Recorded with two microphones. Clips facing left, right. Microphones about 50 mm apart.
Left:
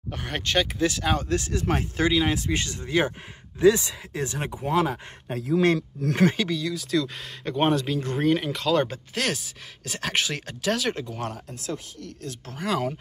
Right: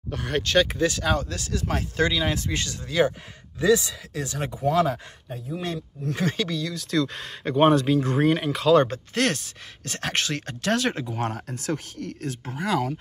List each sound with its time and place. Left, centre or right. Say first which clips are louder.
0.1 s speech: right 3 dB; left
0.7 s speech: right 1 dB; centre
1.3 s speech: left 3 dB; left
2.0 s speech: even; centre
5.3 s speech: left 9 dB; left
6.3 s speech: left 1 dB; centre
11.5 s speech: right 4 dB; right
12.4 s speech: right 2 dB; centre